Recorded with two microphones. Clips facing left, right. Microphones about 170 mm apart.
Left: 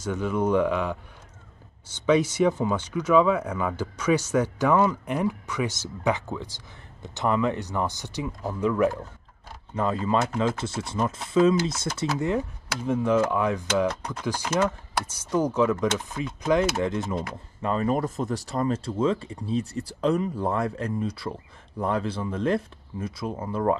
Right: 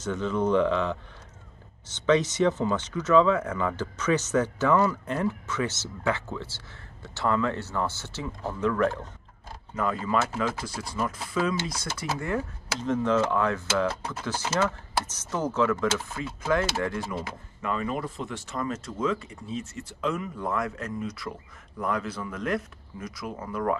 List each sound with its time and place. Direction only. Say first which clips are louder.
0.0 s speech: left 1 dB; 10° left (ahead or behind)
9.8 s speech: left 2 dB; 25° left (ahead or behind)
13.8 s speech: left 2 dB; 5° right (ahead or behind)
14.2 s speech: left 2 dB; 10° left (ahead or behind)
17.1 s speech: left 4 dB; 30° left (ahead or behind)